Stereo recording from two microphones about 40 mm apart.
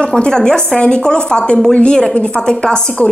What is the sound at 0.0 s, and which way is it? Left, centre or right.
A woman's voice, centre.